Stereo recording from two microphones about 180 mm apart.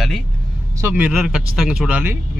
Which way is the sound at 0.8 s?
10° right (ahead or behind).